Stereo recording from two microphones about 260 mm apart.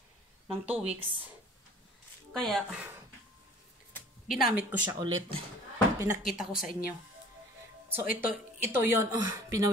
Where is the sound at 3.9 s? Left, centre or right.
Centre.